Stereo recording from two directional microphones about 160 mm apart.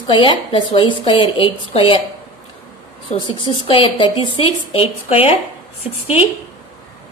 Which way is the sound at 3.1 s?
30° left (ahead or behind).